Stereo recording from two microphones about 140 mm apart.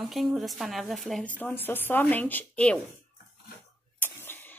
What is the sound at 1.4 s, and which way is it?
Speech, 15° left (ahead or behind).